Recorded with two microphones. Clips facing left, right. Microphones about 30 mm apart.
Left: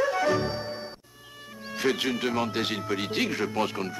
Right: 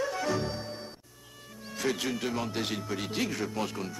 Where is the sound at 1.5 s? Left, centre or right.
Left.